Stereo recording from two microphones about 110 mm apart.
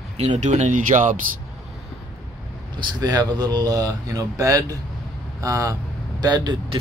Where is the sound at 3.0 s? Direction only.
40° right (ahead or behind).